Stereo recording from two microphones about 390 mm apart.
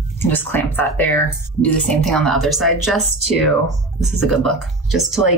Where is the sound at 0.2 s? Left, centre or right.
Centre.